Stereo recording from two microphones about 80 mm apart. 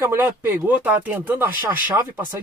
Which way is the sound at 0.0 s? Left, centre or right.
Right.